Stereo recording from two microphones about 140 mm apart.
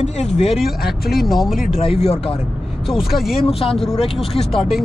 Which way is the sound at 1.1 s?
Centre (ahead or behind).